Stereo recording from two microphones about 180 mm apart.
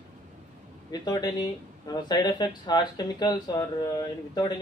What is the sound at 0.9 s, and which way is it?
A man's voice, 20° left (ahead or behind).